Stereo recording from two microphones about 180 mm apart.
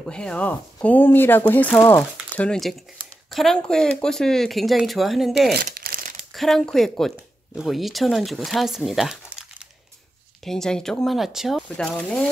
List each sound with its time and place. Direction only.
0.0 s speech: 5° left (ahead or behind)
5.5 s crumpling: 60° right (ahead or behind)
6.3 s speech: centre (ahead or behind)